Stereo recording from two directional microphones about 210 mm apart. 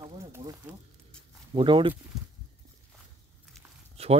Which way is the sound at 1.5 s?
25° right (ahead or behind).